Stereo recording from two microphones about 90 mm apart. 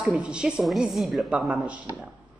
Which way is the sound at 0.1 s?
10° right (ahead or behind).